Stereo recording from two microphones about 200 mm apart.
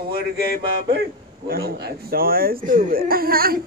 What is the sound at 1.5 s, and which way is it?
Speech, 50° right (ahead or behind).